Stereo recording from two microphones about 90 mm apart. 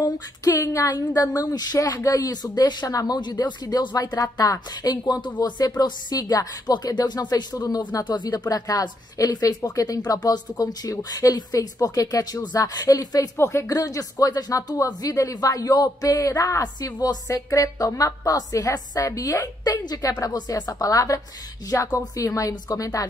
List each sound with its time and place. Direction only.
0.0 s speech: 40° left (ahead or behind)
3.2 s speech: 55° left (ahead or behind)
13.4 s speech: 30° left (ahead or behind)
13.7 s speech: 40° left (ahead or behind)